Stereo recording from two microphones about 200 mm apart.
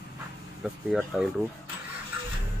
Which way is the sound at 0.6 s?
Centre (ahead or behind).